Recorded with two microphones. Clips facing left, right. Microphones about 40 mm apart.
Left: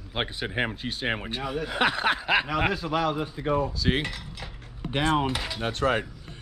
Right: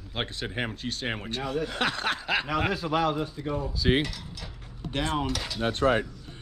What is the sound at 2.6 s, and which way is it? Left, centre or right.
Speech, centre.